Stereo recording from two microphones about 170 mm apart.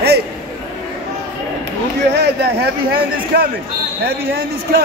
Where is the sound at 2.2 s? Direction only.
70° right (ahead or behind).